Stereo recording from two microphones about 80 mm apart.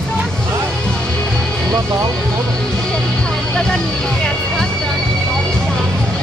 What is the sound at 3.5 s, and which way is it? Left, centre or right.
Music, centre.